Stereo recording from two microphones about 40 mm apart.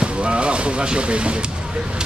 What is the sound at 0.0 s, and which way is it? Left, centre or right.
Music, right.